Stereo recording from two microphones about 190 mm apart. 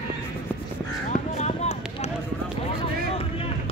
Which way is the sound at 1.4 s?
35° left (ahead or behind).